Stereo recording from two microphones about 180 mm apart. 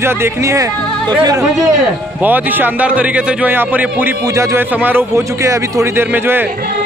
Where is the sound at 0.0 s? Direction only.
15° right (ahead or behind).